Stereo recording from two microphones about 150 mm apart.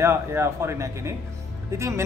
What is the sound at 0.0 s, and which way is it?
A man's voice, 15° right (ahead or behind).